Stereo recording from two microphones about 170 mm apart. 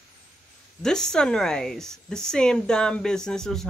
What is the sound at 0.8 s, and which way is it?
Speech, 5° left (ahead or behind).